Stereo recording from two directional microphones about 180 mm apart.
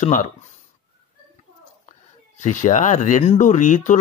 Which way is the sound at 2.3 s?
40° left (ahead or behind).